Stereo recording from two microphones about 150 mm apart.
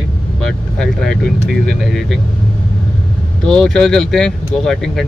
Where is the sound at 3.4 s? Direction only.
5° left (ahead or behind).